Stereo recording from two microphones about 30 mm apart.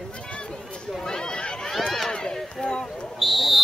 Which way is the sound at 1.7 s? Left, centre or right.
Centre.